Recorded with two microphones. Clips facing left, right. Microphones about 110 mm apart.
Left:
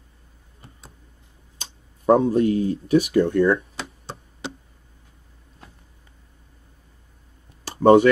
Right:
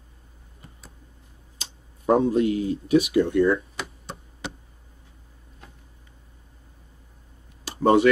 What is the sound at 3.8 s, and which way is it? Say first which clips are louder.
Tick-tock: even; 30° left (ahead or behind).